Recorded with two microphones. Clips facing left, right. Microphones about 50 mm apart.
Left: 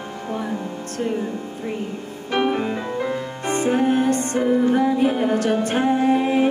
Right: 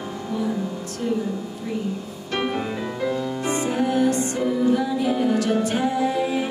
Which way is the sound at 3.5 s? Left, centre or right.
Left.